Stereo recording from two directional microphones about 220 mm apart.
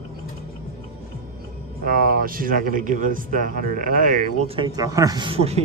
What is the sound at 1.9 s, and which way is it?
Speech, 40° right (ahead or behind).